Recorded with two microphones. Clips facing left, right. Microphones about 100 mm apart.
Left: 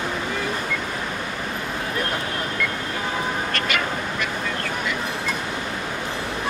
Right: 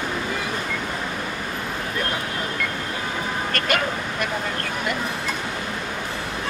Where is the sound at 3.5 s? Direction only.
45° right (ahead or behind).